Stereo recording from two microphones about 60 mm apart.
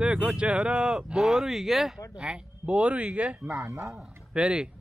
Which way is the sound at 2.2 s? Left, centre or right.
Centre.